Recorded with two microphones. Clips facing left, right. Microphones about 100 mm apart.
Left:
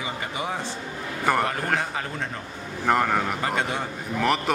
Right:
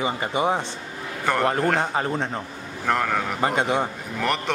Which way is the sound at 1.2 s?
5° left (ahead or behind).